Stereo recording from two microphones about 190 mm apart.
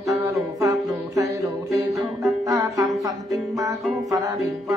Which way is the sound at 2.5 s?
15° right (ahead or behind).